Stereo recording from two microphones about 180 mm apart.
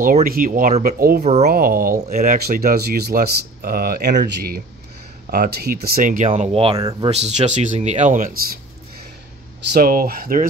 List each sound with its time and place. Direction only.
0.0 s speech: 50° right (ahead or behind)
6.3 s speech: 35° right (ahead or behind)
6.8 s speech: 20° right (ahead or behind)
7.1 s speech: 35° right (ahead or behind)
9.7 s speech: 55° right (ahead or behind)